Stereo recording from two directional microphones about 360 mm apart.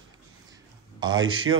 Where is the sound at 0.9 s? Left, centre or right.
Centre.